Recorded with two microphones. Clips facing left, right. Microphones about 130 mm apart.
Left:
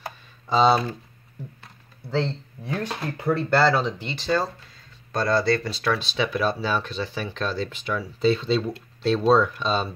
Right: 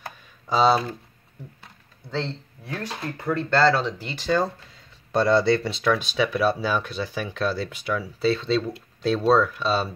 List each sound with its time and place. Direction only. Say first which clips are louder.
0.5 s speech: left 1 dB; 5° right (ahead or behind)
2.0 s speech: left 4 dB; 15° left (ahead or behind); by 4.3 s 5° right (ahead or behind)
5.1 s speech: right 3 dB; 25° right (ahead or behind)
5.9 s speech: right 2 dB; 10° right (ahead or behind)